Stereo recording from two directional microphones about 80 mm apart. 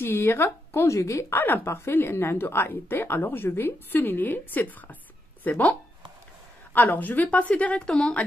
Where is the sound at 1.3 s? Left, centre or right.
Left.